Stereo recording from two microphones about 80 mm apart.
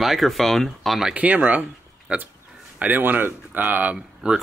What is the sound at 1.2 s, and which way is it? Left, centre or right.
Speech, centre.